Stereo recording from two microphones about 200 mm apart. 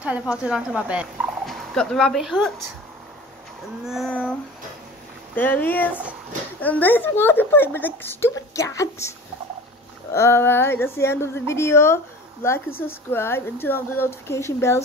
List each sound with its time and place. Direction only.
0.0 s speech: 5° right (ahead or behind)
3.8 s a sound: centre (ahead or behind)
5.3 s a woman's voice: 10° left (ahead or behind)
10.1 s a woman's voice: 15° left (ahead or behind)